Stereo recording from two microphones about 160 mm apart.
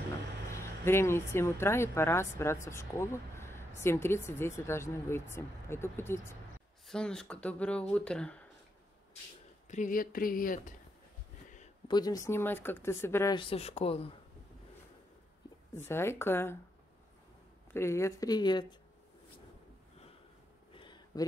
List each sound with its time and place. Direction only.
0.5 s speech: 15° left (ahead or behind)
6.9 s speech: 5° left (ahead or behind)
9.7 s speech: 55° left (ahead or behind)
11.9 s speech: 25° left (ahead or behind)
13.3 s speech: 35° left (ahead or behind)
15.7 s speech: 15° left (ahead or behind)
17.7 s speech: 15° left (ahead or behind)
20.7 s a sound: 30° left (ahead or behind)